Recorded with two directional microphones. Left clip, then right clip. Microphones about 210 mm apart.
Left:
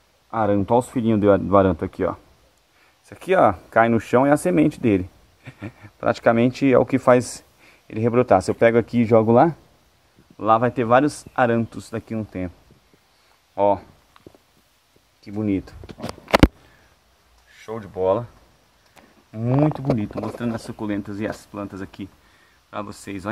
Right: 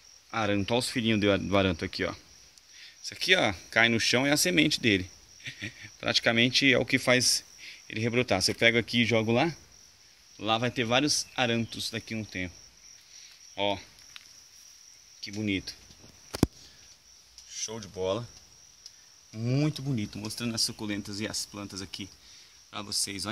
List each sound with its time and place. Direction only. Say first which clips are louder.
0.3 s speech: left 9 dB; 20° right (ahead or behind)
7.2 s speech: left 3 dB; 25° left (ahead or behind)
7.6 s speech: left 9 dB; 15° right (ahead or behind)
8.9 s speech: left 10 dB; 10° right (ahead or behind)
10.3 s speech: left 11 dB; 20° right (ahead or behind)
13.6 s speech: left 11 dB; 15° right (ahead or behind)
15.2 s speech: left 7 dB; 15° right (ahead or behind)
17.5 s speech: left 5 dB; 25° right (ahead or behind)
19.6 s speech: left 13 dB; 30° right (ahead or behind)